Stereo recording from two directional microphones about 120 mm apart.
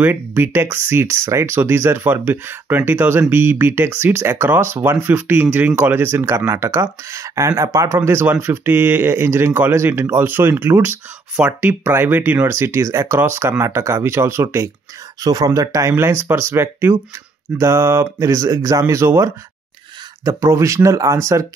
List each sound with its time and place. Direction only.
0.0 s speech: 15° right (ahead or behind)